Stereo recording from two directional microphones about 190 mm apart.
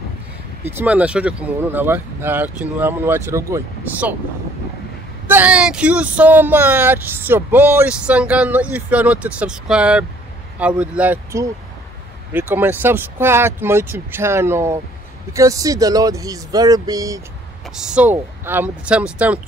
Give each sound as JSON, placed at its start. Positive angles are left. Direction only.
{"t": 0.7, "sound": "speech", "side_deg": -10}
{"t": 5.3, "sound": "speech", "side_deg": -5}
{"t": 17.7, "sound": "speech", "side_deg": -5}